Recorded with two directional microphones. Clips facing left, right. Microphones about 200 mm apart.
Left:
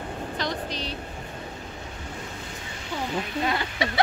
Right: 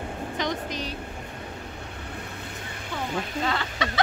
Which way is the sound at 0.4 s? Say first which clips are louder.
Right 2 dB; 15° right (ahead or behind).